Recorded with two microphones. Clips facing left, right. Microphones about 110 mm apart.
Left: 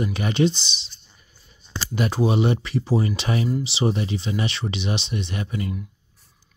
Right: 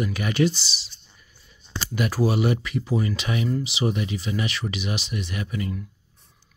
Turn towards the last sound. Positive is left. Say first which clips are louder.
# left 1 dB
turn(degrees=30)  # may be behind; listen again after turning